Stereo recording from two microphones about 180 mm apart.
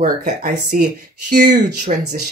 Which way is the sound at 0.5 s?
60° right (ahead or behind).